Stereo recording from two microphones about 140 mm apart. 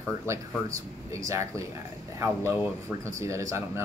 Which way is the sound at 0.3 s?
20° right (ahead or behind).